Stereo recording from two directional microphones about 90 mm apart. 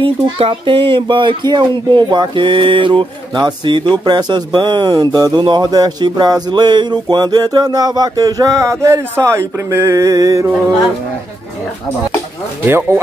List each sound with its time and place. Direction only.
0.0 s speech: 85° right
1.0 s speech: 60° right (ahead or behind)
3.3 s speech: 55° right (ahead or behind); by 10.5 s 35° right (ahead or behind)
12.6 s speech: 25° right (ahead or behind)